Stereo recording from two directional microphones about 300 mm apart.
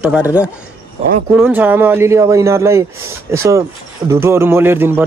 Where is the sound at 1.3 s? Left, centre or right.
Centre.